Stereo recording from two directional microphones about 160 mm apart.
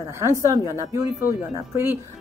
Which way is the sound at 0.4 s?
20° right (ahead or behind).